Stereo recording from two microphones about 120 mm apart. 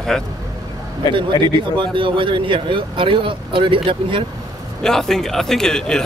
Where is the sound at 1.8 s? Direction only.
45° right (ahead or behind).